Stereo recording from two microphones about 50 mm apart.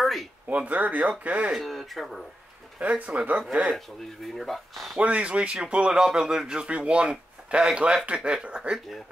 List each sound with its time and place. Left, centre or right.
0.0 s a sound: centre
0.5 s a man's voice: right
1.6 s speech: centre
2.8 s a man's voice: right
3.7 s speech: centre
4.9 s a man's voice: right
8.7 s speech: centre